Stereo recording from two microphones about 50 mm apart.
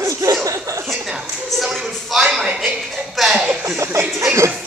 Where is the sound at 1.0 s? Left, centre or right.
Centre.